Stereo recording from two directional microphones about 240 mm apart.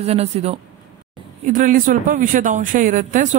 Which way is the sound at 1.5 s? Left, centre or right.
Right.